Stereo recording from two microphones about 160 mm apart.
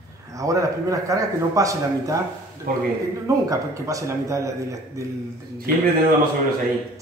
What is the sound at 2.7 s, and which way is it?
Speech, 65° right (ahead or behind).